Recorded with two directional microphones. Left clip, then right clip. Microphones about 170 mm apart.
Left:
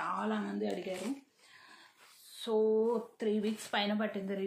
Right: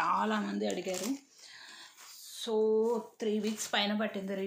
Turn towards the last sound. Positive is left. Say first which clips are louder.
# right 1 dB
turn(degrees=-10)  # may be behind; listen again after turning